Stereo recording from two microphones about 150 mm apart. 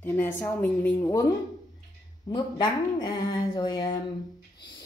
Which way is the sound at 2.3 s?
30° left (ahead or behind).